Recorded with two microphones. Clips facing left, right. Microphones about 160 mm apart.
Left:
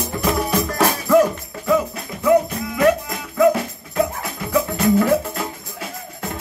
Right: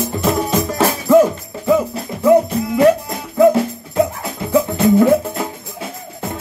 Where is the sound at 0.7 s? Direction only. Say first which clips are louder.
Right 4 dB; 15° right (ahead or behind).